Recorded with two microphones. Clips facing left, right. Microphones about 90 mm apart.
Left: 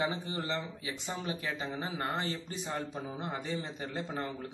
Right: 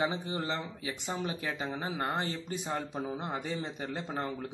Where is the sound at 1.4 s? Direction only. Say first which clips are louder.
Right 1 dB; 10° right (ahead or behind).